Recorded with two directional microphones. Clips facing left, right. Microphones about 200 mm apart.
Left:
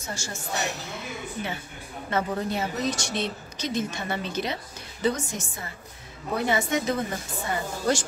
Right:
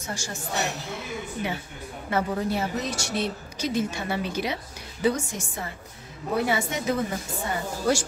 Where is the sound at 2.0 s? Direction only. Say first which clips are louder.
Right 1 dB; 10° right (ahead or behind).